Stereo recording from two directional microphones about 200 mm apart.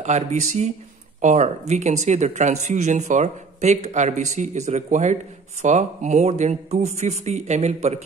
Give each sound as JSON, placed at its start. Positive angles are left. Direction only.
{"t": 0.0, "sound": "speech", "side_deg": -35}